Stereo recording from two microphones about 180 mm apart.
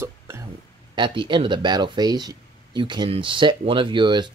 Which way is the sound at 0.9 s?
25° right (ahead or behind).